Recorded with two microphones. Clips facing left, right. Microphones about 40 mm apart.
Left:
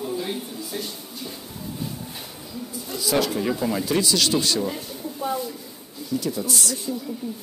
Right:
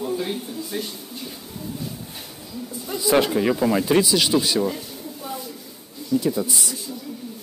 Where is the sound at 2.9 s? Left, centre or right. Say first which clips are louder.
Right 4 dB; right.